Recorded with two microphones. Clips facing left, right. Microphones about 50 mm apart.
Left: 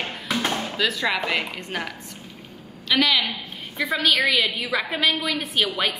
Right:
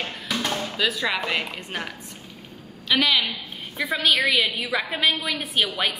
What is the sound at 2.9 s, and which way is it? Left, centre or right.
A woman's voice, centre.